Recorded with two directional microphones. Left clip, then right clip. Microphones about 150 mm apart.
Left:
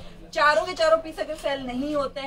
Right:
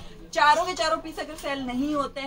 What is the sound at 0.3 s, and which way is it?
A woman's voice, 5° left (ahead or behind).